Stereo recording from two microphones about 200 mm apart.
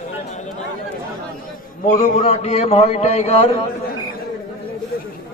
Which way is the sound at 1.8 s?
35° left (ahead or behind).